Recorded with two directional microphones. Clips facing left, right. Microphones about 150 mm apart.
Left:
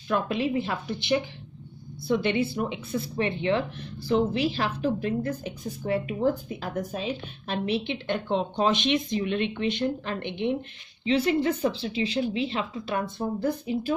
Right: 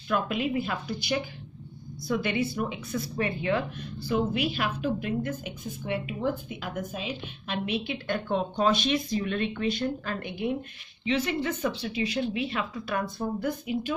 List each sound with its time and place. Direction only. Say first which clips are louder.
0.1 s a woman's voice: left 2 dB; 30° left (ahead or behind)